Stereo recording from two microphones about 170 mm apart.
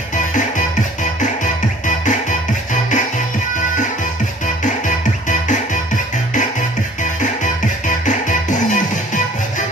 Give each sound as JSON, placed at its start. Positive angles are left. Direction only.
{"t": 1.4, "sound": "music", "side_deg": 50}
{"t": 8.0, "sound": "music", "side_deg": 45}